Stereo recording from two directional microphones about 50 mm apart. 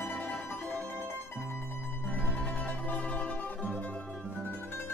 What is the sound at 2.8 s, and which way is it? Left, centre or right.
Music, left.